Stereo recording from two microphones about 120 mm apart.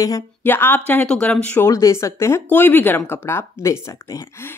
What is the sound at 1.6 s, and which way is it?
A woman's voice, 25° left (ahead or behind).